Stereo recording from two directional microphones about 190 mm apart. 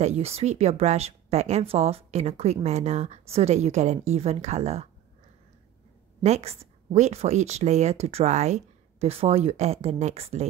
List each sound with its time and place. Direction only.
0.0 s speech: 35° right (ahead or behind)
6.2 s speech: 35° right (ahead or behind)